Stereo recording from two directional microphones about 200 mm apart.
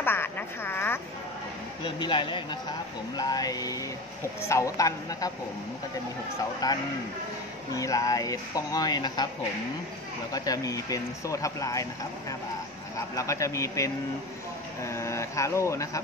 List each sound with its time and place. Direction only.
0.0 s a sound: 10° left (ahead or behind)
2.0 s speech: 25° left (ahead or behind)
6.6 s speech: 20° left (ahead or behind)
10.3 s speech: 20° left (ahead or behind)